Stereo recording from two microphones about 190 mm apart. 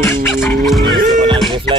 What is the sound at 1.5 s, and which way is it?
Music, 25° right (ahead or behind).